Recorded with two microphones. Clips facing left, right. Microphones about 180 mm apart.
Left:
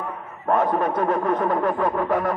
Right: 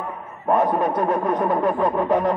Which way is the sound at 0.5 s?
15° right (ahead or behind).